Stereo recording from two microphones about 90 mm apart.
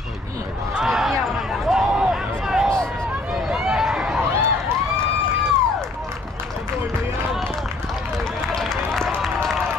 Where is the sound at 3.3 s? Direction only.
5° right (ahead or behind).